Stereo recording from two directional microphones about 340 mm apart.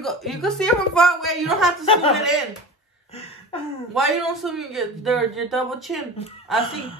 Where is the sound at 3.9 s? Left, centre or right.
Centre.